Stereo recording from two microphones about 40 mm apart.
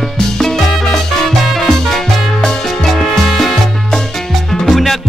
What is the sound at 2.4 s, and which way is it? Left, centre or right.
Salsa music, centre.